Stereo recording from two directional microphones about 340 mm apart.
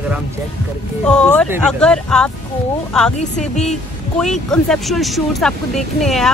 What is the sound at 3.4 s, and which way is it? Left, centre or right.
Speech, centre.